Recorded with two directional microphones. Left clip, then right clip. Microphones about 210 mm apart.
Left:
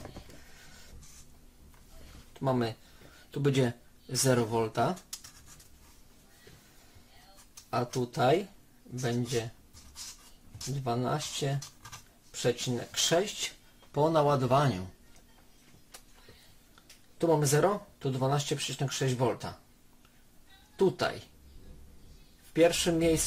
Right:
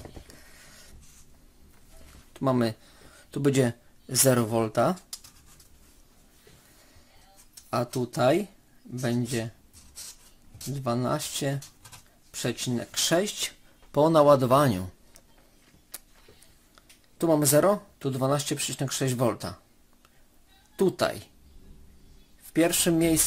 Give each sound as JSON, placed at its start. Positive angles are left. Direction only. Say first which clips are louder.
{"t": 2.3, "sound": "speech", "louder": "right 5 dB", "side_deg": -50}
{"t": 7.7, "sound": "speech", "louder": "right 3 dB", "side_deg": -50}
{"t": 10.8, "sound": "a man's voice", "louder": "right 4 dB", "side_deg": -50}
{"t": 17.2, "sound": "speech", "louder": "right 4 dB", "side_deg": -45}
{"t": 20.7, "sound": "speech", "louder": "right 3 dB", "side_deg": -45}
{"t": 22.5, "sound": "speech", "louder": "right 1 dB", "side_deg": -45}